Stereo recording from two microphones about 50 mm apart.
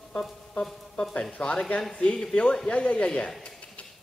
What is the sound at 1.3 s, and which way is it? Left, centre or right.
Speech, left.